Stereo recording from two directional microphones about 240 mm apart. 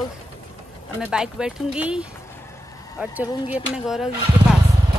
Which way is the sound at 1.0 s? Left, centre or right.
Centre.